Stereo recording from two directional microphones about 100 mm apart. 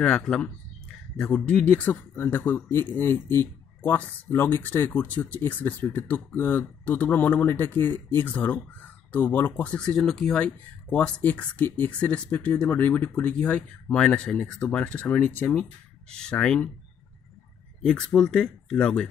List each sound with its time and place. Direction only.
0.0 s speech: 10° left (ahead or behind)
9.8 s speech: 5° left (ahead or behind); by 15.6 s 20° left (ahead or behind)
16.1 s speech: 10° left (ahead or behind)
17.8 s speech: 10° left (ahead or behind)